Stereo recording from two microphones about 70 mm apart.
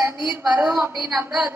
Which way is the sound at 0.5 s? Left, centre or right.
Right.